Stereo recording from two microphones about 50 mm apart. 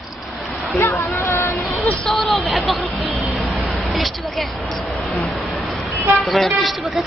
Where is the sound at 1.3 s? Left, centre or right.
Left.